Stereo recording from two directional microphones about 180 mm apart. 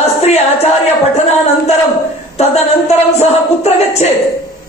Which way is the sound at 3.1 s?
35° left (ahead or behind).